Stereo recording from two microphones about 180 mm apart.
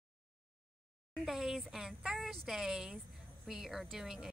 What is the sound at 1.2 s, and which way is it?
Speech, centre (ahead or behind).